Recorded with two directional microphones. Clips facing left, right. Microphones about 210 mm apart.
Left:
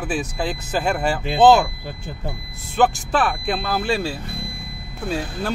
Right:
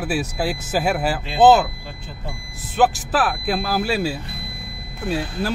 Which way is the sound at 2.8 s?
5° right (ahead or behind).